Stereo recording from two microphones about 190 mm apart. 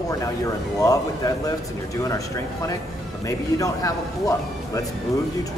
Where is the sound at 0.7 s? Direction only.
20° left (ahead or behind).